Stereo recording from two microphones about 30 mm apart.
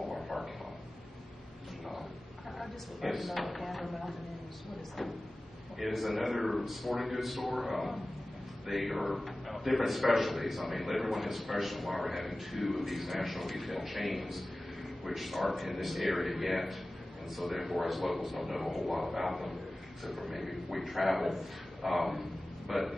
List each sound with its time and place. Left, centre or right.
2.6 s a man's voice: centre
5.9 s a man's voice: centre